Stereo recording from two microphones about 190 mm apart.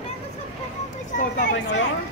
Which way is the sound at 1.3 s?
70° left (ahead or behind).